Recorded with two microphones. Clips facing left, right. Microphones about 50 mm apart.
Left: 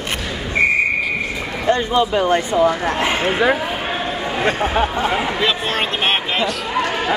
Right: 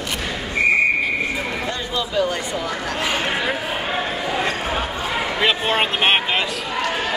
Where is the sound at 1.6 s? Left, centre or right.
Left.